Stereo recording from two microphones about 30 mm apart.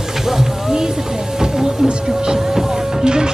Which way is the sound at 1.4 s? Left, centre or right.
Right.